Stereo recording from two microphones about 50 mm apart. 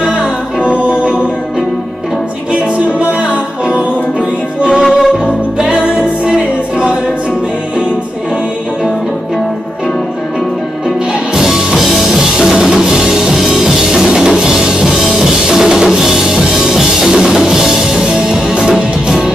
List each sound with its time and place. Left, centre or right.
0.0 s music: right
3.0 s music: right
5.2 s music: right
11.3 s music: centre